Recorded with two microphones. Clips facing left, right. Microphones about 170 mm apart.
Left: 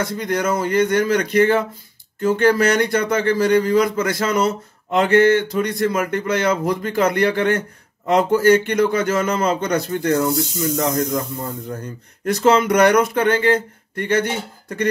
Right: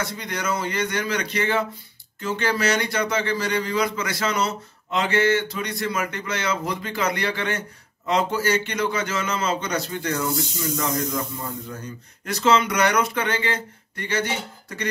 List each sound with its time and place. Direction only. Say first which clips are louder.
0.0 s a man's voice: left 8 dB; 50° left (ahead or behind)